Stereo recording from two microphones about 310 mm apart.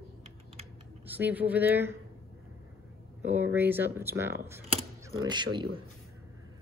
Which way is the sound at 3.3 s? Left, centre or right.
Centre.